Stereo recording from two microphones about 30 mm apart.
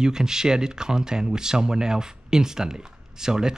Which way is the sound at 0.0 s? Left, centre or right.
Centre.